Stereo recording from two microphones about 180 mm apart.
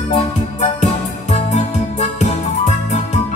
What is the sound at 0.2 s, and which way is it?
Music, 40° left (ahead or behind).